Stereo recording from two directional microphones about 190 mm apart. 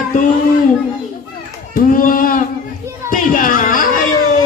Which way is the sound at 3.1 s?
45° left (ahead or behind).